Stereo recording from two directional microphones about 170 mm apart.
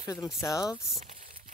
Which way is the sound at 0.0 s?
20° left (ahead or behind).